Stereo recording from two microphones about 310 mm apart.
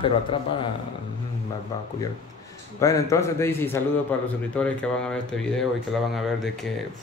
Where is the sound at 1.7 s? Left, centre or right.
Centre.